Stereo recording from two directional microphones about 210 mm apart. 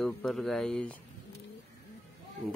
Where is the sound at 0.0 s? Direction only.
Centre (ahead or behind).